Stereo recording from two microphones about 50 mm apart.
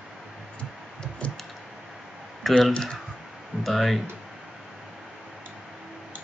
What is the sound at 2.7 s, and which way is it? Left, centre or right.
Speech, centre.